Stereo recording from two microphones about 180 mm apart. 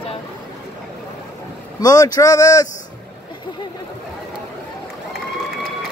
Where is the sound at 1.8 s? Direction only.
20° left (ahead or behind).